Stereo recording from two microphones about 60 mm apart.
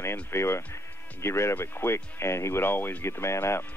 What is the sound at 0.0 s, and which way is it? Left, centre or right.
Speech, left.